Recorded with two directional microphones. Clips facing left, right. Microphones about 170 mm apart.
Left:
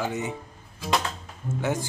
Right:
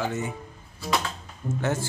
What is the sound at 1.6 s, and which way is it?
Speech, 10° left (ahead or behind).